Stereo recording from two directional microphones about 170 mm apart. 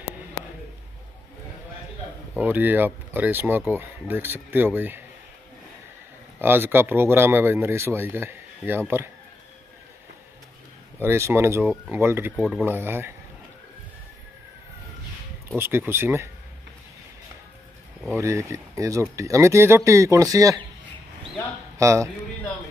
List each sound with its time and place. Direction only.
2.3 s speech: 10° right (ahead or behind)
6.4 s speech: 10° right (ahead or behind)
11.0 s speech: 15° right (ahead or behind)
12.4 s speech: centre (ahead or behind)
12.6 s speech: 10° right (ahead or behind)
15.5 s speech: 15° right (ahead or behind)
18.1 s speech: 15° right (ahead or behind)
21.7 s speech: 20° right (ahead or behind)